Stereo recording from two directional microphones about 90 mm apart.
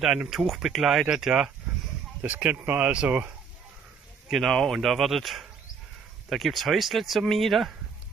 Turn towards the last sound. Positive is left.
turn(degrees=0)  # may be behind; listen again after turning